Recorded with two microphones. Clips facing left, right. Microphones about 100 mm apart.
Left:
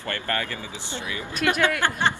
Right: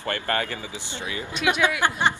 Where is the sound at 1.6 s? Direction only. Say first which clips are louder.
Right 2 dB; 15° right (ahead or behind).